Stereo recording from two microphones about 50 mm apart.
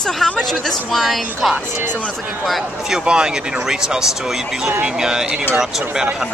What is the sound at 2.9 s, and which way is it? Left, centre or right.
Speech, centre.